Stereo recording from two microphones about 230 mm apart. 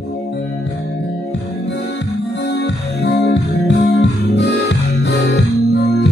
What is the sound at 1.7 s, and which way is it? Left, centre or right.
Music, left.